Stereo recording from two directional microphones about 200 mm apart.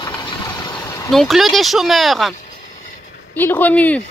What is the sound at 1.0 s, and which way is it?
Speech, centre (ahead or behind).